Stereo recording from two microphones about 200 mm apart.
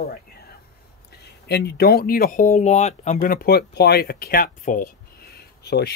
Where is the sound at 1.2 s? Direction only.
55° left (ahead or behind).